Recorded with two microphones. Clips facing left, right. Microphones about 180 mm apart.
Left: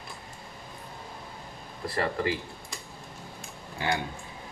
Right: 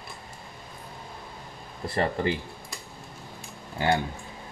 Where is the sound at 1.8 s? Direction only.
25° right (ahead or behind).